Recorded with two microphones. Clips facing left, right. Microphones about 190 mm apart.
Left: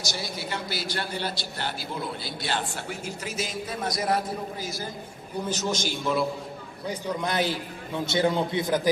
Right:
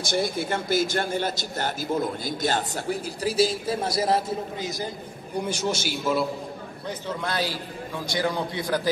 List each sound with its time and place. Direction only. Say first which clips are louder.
0.1 s a man's voice: right 10 dB; 50° right (ahead or behind); by 6.2 s 5° right (ahead or behind)
6.9 s a man's voice: left 1 dB; 15° left (ahead or behind)